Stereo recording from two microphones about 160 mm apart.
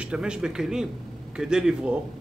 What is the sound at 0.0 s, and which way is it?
A man's voice, 5° right (ahead or behind).